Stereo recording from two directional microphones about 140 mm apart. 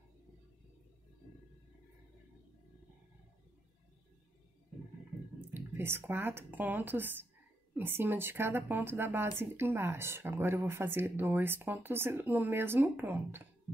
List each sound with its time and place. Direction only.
5.5 s speech: 15° right (ahead or behind)